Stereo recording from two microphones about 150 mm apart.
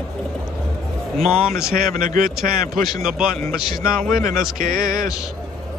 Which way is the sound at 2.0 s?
65° right (ahead or behind).